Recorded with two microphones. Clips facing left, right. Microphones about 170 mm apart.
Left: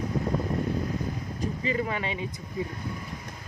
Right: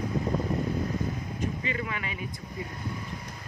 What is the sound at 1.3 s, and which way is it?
Speech, 35° left (ahead or behind).